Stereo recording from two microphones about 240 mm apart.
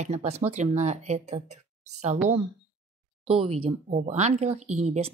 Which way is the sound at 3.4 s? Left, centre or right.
Right.